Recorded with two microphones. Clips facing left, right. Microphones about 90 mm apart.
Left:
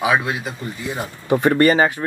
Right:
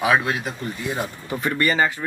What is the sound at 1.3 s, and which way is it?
Speech, 60° left (ahead or behind).